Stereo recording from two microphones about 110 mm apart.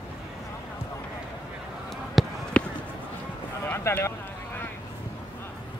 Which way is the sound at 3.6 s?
20° left (ahead or behind).